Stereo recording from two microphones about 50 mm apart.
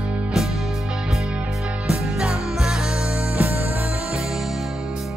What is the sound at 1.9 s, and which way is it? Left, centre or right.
Music, centre.